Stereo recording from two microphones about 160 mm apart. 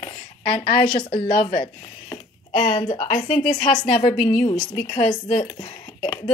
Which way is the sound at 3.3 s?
45° left (ahead or behind).